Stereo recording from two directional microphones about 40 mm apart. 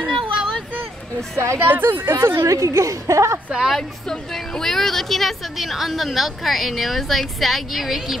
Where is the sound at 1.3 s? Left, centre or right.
Right.